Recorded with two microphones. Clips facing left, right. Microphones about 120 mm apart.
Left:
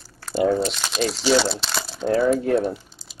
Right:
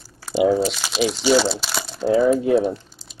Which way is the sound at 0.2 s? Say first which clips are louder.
Right 3 dB; 5° right (ahead or behind).